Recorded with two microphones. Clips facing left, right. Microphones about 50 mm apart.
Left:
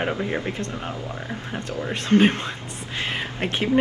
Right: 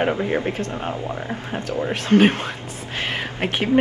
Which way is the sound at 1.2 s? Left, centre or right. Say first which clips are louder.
Right 3 dB; centre.